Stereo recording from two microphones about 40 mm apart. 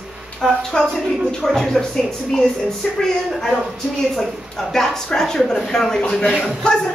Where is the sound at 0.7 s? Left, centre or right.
Centre.